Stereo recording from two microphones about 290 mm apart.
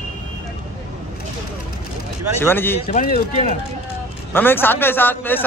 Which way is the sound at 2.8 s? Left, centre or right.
Left.